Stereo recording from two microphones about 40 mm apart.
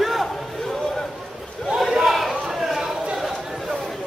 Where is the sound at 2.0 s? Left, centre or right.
Centre.